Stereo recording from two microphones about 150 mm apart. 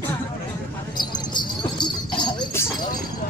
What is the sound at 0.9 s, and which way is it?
Jingle bell, 30° left (ahead or behind).